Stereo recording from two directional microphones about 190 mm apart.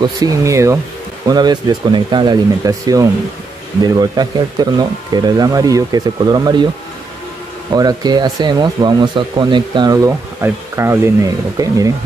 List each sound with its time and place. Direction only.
0.0 s speech: 20° right (ahead or behind)
7.7 s speech: 20° right (ahead or behind)